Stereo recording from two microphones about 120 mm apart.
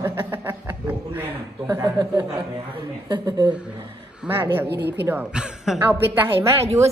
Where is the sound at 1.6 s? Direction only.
30° right (ahead or behind).